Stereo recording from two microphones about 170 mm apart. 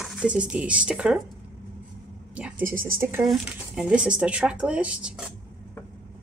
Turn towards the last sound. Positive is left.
turn(degrees=-5)  # may be behind; listen again after turning